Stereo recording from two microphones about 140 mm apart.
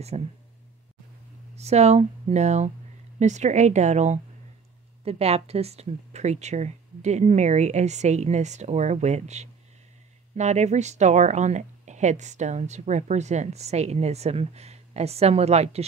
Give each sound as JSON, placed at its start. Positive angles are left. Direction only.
{"t": 0.1, "sound": "speech", "side_deg": -50}
{"t": 1.5, "sound": "speech", "side_deg": -50}